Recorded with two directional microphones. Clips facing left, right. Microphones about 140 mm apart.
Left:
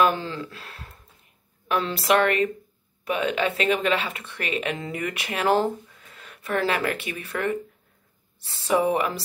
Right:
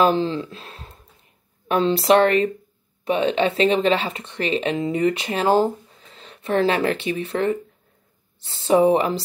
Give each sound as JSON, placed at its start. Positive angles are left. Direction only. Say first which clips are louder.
{"t": 0.0, "sound": "speech", "louder": "right 4 dB", "side_deg": -25}